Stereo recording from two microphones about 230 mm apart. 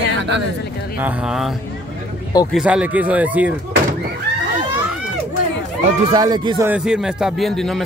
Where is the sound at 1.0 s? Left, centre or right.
Centre.